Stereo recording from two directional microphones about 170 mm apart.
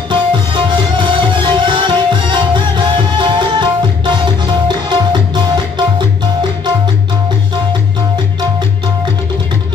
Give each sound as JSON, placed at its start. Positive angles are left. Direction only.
{"t": 0.1, "sound": "music", "side_deg": -30}